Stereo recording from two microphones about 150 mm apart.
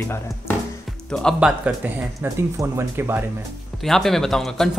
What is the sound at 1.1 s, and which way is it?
Speech, centre (ahead or behind).